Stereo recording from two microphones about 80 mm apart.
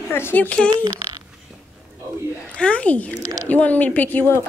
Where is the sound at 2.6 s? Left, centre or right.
Centre.